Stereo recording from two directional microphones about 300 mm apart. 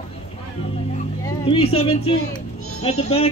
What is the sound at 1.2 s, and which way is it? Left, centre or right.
Speech, centre.